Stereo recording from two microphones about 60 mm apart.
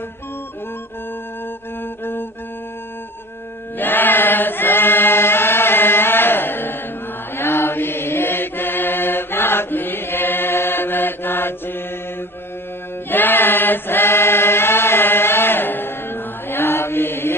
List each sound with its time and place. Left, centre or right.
3.7 s chant: left
13.1 s chant: left